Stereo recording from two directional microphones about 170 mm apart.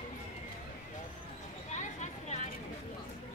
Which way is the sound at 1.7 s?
45° left (ahead or behind).